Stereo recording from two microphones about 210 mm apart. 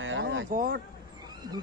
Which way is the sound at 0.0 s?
65° right (ahead or behind).